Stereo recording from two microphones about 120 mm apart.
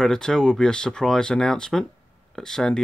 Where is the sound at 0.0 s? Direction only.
5° left (ahead or behind).